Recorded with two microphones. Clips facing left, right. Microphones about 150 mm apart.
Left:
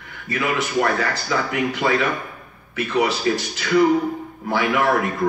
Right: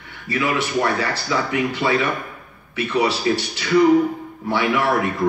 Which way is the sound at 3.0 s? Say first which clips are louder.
Even; 30° right (ahead or behind).